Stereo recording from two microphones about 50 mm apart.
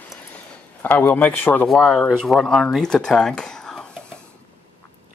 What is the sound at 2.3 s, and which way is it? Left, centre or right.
Speech, right.